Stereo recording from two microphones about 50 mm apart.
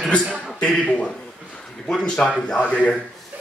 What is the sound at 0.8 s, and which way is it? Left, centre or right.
Speech, left.